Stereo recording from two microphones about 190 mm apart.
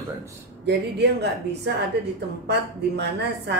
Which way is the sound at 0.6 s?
60° right (ahead or behind).